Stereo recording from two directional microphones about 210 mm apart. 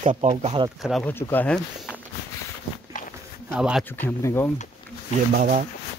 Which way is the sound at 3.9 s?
10° left (ahead or behind).